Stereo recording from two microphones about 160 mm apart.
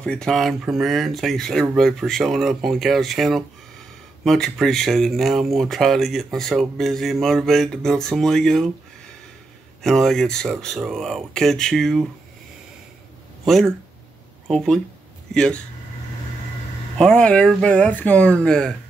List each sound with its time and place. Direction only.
0.0 s speech: 5° left (ahead or behind)
9.8 s speech: centre (ahead or behind)
13.5 s speech: centre (ahead or behind)
17.0 s speech: 5° left (ahead or behind)